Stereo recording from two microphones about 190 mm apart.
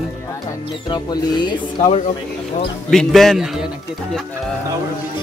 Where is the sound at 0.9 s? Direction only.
20° left (ahead or behind).